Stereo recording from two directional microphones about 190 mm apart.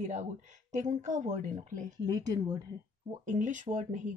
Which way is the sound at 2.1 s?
20° right (ahead or behind).